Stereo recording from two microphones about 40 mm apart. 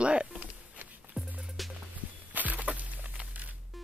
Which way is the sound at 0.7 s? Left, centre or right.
Right.